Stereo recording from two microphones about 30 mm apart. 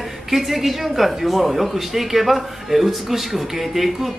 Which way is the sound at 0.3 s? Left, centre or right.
Centre.